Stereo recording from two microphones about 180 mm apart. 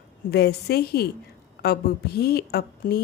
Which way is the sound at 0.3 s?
65° left (ahead or behind).